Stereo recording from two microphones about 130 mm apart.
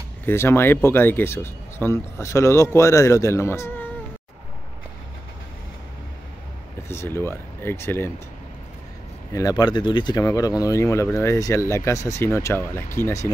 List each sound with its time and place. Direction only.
0.2 s speech: 20° left (ahead or behind)
6.9 s speech: 20° left (ahead or behind)
9.3 s speech: 30° left (ahead or behind)